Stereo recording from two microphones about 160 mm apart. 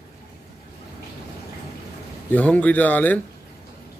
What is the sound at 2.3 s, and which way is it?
Speech, 10° left (ahead or behind).